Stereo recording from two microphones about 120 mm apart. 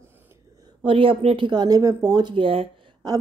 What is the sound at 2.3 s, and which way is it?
Speech, 50° right (ahead or behind).